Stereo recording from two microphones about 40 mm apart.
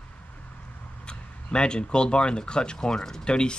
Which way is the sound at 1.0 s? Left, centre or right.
Left.